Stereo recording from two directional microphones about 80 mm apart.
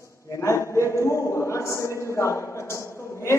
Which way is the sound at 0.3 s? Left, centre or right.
Left.